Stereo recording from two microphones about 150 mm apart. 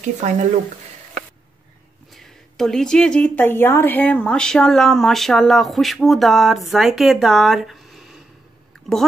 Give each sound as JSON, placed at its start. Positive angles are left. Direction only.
{"t": 0.0, "sound": "speech", "side_deg": -55}
{"t": 2.1, "sound": "a woman's voice", "side_deg": 0}